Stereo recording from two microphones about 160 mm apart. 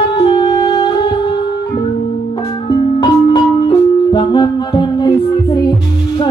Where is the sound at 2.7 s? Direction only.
25° left (ahead or behind).